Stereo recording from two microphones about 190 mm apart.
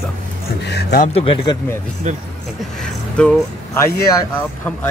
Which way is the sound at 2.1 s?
35° right (ahead or behind).